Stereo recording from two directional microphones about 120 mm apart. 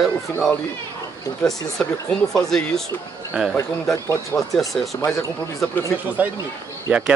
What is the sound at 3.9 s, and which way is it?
Speech, 25° left (ahead or behind).